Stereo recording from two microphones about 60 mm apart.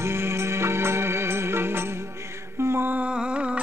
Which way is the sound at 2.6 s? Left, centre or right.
Right.